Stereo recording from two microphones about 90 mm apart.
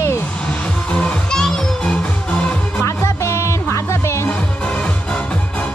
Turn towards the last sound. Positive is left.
turn(degrees=30)  # may be behind; listen again after turning